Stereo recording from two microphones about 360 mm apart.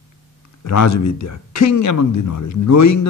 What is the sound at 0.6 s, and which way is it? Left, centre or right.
Speech, left.